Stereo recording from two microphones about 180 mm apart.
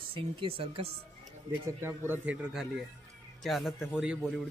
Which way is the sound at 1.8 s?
15° right (ahead or behind).